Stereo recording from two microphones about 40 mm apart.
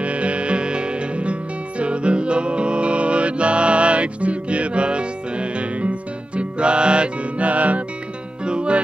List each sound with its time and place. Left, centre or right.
0.0 s music: right